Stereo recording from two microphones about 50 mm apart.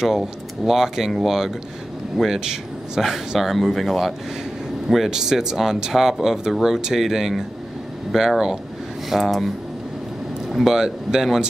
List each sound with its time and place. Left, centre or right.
0.0 s speech: centre
9.1 s speech: centre
10.5 s speech: centre